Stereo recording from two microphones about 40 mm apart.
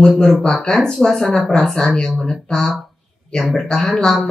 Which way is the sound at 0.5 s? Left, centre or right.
Centre.